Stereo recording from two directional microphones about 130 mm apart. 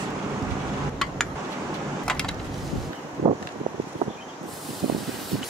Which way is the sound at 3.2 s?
35° right (ahead or behind).